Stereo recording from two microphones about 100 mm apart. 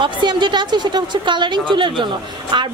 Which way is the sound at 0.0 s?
50° right (ahead or behind).